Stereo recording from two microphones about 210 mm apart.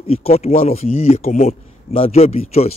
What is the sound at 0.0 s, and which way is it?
A man's voice, 30° left (ahead or behind).